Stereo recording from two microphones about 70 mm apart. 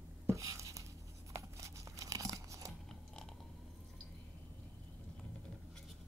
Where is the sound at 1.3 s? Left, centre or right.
Right.